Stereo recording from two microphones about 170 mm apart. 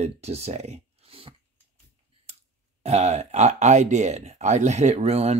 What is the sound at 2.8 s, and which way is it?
Speech, 40° right (ahead or behind).